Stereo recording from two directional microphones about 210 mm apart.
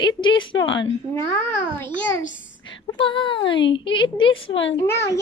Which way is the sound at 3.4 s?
60° left (ahead or behind).